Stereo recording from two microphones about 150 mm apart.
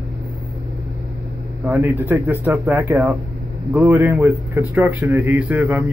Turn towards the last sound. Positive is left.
turn(degrees=-10)  # may be behind; listen again after turning